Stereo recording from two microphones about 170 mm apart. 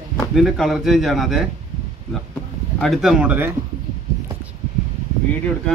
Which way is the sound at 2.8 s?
Centre (ahead or behind).